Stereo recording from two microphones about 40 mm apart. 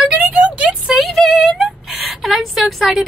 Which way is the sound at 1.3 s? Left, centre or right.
Centre.